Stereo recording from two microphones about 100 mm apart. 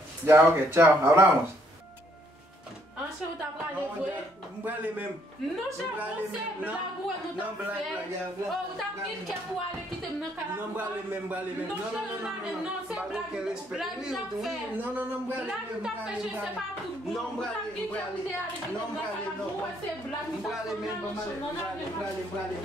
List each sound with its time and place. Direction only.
0.3 s speech: 25° right (ahead or behind)
12.9 s a woman's voice: 5° right (ahead or behind)
14.8 s speech: 20° right (ahead or behind)